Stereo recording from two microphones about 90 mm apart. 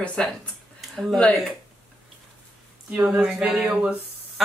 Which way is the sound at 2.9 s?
20° right (ahead or behind).